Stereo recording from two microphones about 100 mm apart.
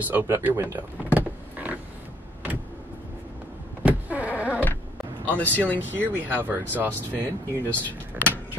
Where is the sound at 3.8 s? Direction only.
15° right (ahead or behind).